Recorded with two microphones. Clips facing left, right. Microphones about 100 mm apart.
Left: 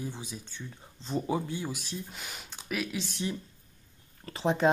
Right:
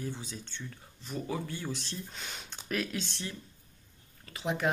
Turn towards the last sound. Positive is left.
turn(degrees=30)  # may be behind; listen again after turning